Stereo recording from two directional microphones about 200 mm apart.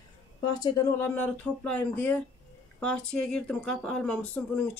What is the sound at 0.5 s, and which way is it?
Speech, 15° left (ahead or behind).